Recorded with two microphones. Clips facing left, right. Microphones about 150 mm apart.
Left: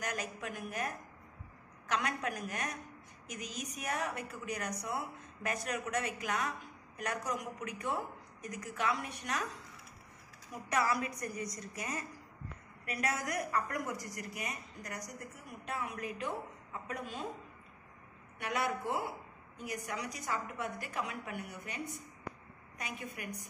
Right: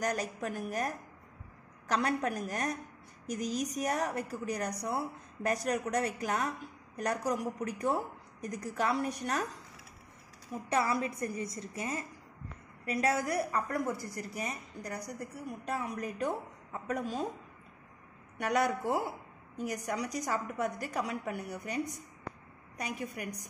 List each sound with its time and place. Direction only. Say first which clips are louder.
0.0 s a woman's voice: right 6 dB; 35° right (ahead or behind)
10.7 s a woman's voice: right 2 dB; 25° right (ahead or behind)
18.4 s a woman's voice: right 5 dB; 45° right (ahead or behind)